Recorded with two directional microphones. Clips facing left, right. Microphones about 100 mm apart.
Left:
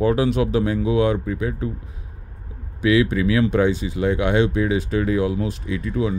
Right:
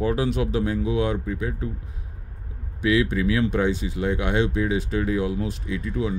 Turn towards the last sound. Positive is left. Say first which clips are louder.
# left 4 dB
turn(degrees=90)